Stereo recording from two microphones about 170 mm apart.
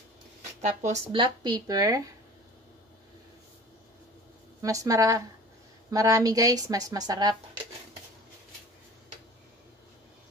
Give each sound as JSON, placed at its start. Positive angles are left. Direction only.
{"t": 0.6, "sound": "speech", "side_deg": -40}
{"t": 1.1, "sound": "a woman's voice", "side_deg": -25}
{"t": 4.6, "sound": "a woman's voice", "side_deg": -20}